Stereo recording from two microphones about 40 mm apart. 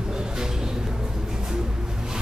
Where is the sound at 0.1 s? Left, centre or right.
Centre.